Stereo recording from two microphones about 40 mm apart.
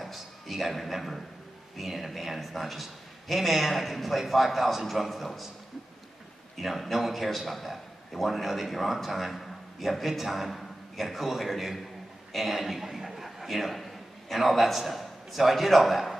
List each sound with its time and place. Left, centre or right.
0.0 s a sound: centre
1.8 s a man's voice: centre
6.6 s a man's voice: centre